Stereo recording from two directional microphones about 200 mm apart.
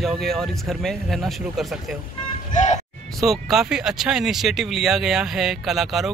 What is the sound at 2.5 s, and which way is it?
Speech, 35° left (ahead or behind).